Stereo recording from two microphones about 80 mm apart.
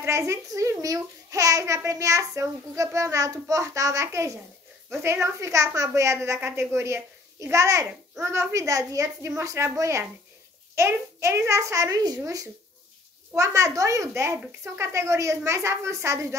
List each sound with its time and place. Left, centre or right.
0.0 s a child's voice: right
13.3 s a child's voice: right